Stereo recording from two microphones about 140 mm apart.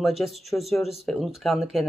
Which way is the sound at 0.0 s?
Centre (ahead or behind).